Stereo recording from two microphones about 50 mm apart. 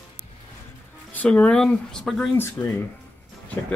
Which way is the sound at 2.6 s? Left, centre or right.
Left.